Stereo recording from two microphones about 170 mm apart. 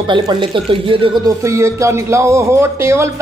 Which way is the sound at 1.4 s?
15° right (ahead or behind).